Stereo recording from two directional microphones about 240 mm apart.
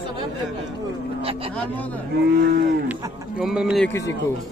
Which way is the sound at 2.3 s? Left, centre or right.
Right.